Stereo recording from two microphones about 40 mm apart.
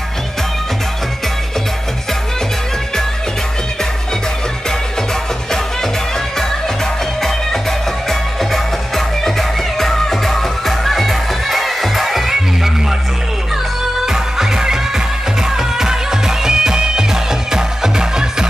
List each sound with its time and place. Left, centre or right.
6.3 s music: centre
14.0 s music: centre